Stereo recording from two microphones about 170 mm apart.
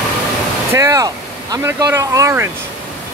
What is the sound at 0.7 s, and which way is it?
Speech, 20° right (ahead or behind).